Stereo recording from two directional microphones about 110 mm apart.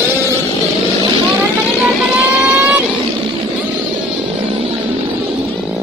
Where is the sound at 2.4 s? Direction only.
15° right (ahead or behind).